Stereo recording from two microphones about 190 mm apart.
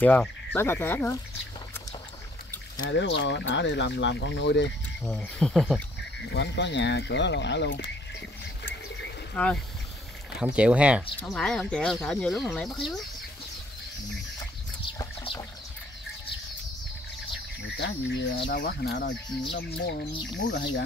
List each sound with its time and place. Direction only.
0.0 s speech: 5° left (ahead or behind)
2.9 s speech: 70° left (ahead or behind)
5.0 s speech: 5° left (ahead or behind)
6.3 s speech: 65° left (ahead or behind)
9.3 s speech: 5° left (ahead or behind)
10.4 s speech: 5° right (ahead or behind)
15.0 s boat: 20° left (ahead or behind)
17.6 s speech: 65° left (ahead or behind)
18.5 s speech: 55° left (ahead or behind)